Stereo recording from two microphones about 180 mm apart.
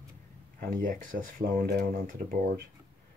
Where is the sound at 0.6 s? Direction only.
50° right (ahead or behind).